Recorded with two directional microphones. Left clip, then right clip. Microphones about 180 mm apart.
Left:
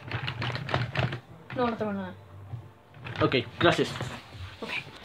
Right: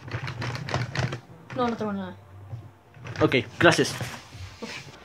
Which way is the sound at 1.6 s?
10° right (ahead or behind).